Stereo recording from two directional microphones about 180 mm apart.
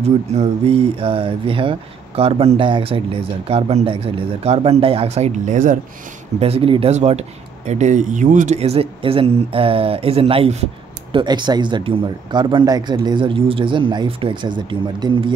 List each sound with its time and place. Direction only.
0.0 s speech: 35° right (ahead or behind)
6.4 s speech: 35° right (ahead or behind)